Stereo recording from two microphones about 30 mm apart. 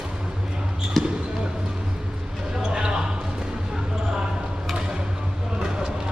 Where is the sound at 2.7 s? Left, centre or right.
Right.